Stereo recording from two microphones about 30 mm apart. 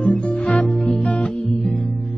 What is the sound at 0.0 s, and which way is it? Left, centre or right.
Music, left.